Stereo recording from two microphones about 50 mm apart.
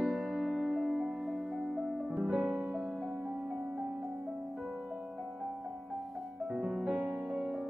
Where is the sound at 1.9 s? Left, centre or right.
Right.